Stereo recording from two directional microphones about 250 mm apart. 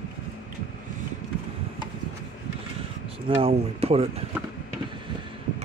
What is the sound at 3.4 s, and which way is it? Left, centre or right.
Speech, right.